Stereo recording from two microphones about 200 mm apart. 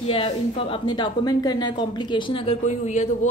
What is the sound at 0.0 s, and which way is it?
A woman's voice, 30° left (ahead or behind).